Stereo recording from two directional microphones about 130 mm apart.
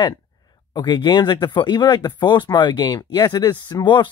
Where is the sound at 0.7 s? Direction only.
35° left (ahead or behind).